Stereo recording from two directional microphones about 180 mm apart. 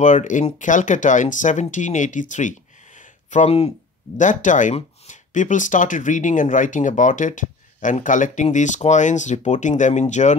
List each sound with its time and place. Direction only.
0.0 s speech: 45° left (ahead or behind)
3.0 s a sound: 40° left (ahead or behind)
4.2 s speech: 45° left (ahead or behind)